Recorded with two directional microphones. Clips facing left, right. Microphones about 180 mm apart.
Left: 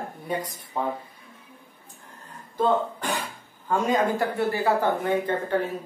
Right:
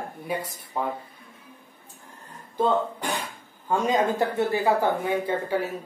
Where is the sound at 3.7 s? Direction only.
20° right (ahead or behind).